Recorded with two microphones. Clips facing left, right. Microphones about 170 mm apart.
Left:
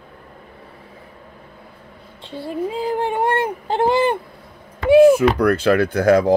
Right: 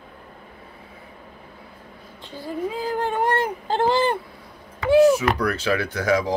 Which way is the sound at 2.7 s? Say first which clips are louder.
Left 4 dB; 20° left (ahead or behind).